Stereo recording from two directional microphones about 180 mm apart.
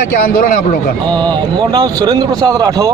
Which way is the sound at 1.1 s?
25° right (ahead or behind).